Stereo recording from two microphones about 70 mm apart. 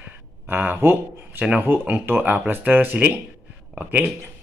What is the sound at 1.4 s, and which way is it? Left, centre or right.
Speech, right.